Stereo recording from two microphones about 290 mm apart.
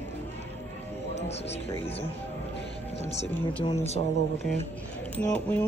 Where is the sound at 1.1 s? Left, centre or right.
Left.